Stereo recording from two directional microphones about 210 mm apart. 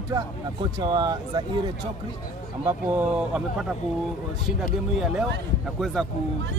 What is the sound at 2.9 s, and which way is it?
Speech, 5° right (ahead or behind).